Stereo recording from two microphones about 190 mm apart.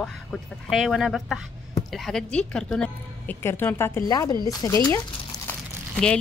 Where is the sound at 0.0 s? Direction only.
Centre (ahead or behind).